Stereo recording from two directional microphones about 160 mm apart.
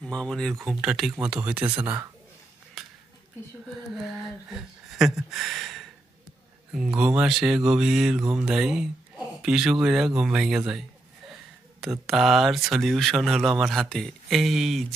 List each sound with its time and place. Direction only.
0.0 s speech: 5° left (ahead or behind)
2.8 s a sound: centre (ahead or behind)
4.1 s a man's voice: centre (ahead or behind)